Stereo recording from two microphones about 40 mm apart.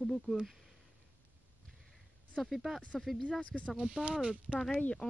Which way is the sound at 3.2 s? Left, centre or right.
Left.